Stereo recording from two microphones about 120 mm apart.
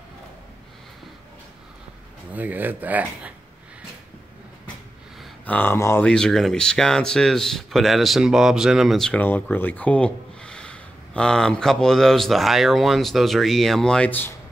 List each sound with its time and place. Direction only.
2.3 s speech: 15° right (ahead or behind)
5.4 s speech: 15° left (ahead or behind)
6.0 s speech: 5° left (ahead or behind)
9.2 s speech: 15° left (ahead or behind)